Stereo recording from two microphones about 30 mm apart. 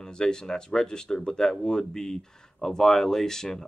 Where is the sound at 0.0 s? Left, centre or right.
Left.